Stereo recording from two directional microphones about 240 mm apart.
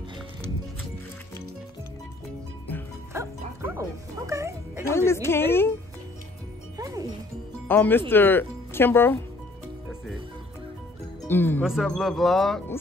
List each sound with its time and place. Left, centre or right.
3.1 s music: centre
4.9 s speech: centre
6.8 s music: centre
7.6 s speech: centre
11.2 s speech: centre
11.6 s speech: centre